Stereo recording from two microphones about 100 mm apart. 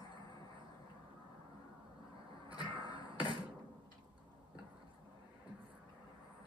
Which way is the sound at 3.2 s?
45° left (ahead or behind).